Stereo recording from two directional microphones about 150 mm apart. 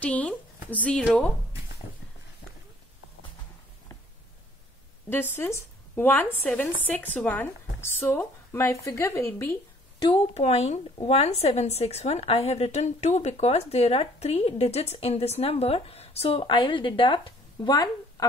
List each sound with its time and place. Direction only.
0.0 s speech: 10° left (ahead or behind)
5.1 s speech: 15° left (ahead or behind)
9.9 s speech: 30° left (ahead or behind)
10.3 s a woman's voice: 45° left (ahead or behind); by 17.8 s 25° left (ahead or behind)